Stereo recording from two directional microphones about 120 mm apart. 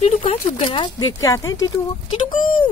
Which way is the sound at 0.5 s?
50° left (ahead or behind).